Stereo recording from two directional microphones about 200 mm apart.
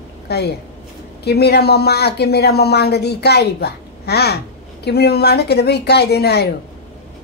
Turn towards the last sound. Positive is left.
turn(degrees=55)  # may be behind; listen again after turning